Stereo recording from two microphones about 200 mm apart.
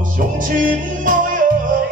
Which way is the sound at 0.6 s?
45° right (ahead or behind).